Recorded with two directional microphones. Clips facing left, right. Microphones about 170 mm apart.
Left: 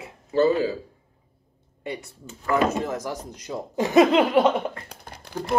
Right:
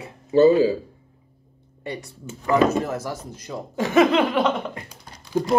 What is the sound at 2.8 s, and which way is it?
Speech, 15° left (ahead or behind).